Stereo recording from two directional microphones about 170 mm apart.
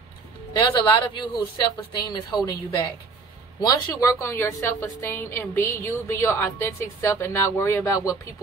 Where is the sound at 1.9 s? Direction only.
25° left (ahead or behind).